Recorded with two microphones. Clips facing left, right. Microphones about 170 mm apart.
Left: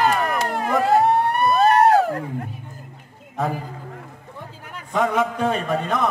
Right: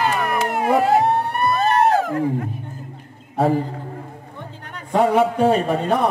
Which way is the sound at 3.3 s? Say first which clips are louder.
Right 7 dB; 30° right (ahead or behind).